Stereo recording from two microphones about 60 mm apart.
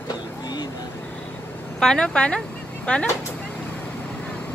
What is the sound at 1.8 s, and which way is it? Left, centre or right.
Speech, centre.